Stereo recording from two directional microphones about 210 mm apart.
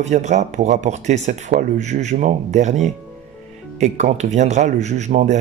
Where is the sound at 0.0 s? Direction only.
35° right (ahead or behind).